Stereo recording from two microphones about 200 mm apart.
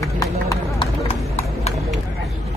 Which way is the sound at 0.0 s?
15° left (ahead or behind).